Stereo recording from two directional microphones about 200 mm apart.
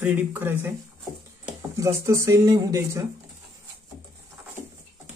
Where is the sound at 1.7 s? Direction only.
15° right (ahead or behind).